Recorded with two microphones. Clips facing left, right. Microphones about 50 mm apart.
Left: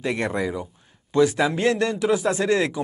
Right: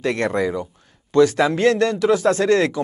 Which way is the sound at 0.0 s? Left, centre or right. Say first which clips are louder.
Right 4 dB; centre.